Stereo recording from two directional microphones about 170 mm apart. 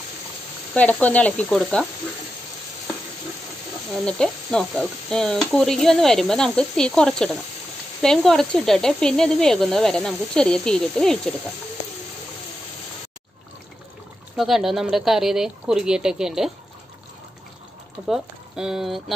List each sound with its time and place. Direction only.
0.7 s speech: 10° left (ahead or behind)
4.0 s speech: 5° left (ahead or behind)
14.3 s speech: centre (ahead or behind)
18.0 s speech: 5° right (ahead or behind)